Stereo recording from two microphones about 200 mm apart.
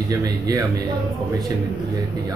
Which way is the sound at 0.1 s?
15° right (ahead or behind).